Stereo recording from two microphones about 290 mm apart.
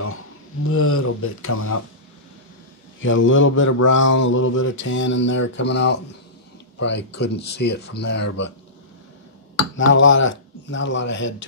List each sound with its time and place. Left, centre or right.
0.7 s speech: left
3.0 s speech: left
10.0 s speech: left